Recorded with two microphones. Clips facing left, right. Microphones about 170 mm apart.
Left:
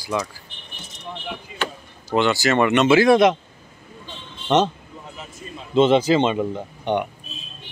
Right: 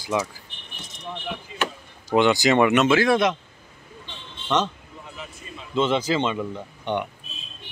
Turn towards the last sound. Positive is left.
turn(degrees=20)  # may be behind; listen again after turning